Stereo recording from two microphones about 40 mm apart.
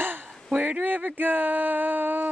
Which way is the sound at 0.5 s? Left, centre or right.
Right.